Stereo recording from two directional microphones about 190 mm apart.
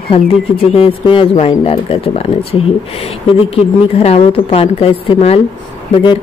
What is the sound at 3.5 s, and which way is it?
A woman's voice, 30° left (ahead or behind).